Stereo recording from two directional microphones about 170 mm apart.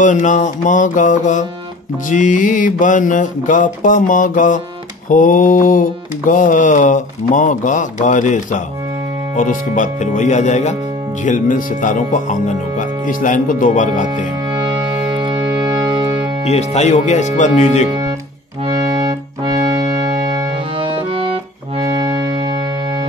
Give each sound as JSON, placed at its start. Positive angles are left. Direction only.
{"t": 0.0, "sound": "mantra", "side_deg": 45}
{"t": 14.5, "sound": "music", "side_deg": -25}
{"t": 16.4, "sound": "mantra", "side_deg": 40}
{"t": 18.7, "sound": "music", "side_deg": -35}